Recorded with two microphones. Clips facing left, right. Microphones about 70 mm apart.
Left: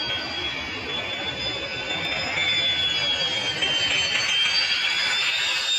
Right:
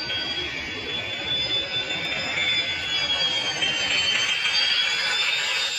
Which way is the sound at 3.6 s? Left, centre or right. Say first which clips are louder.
Even; centre.